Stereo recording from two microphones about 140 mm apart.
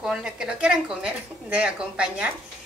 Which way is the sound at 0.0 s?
5° right (ahead or behind).